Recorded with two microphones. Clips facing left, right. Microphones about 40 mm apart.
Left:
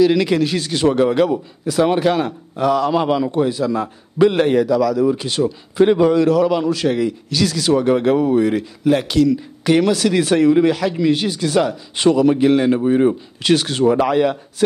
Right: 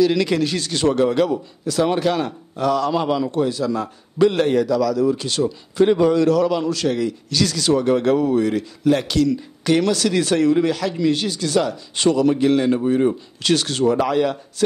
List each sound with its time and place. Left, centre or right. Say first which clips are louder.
0.0 s a man's voice: left 3 dB; centre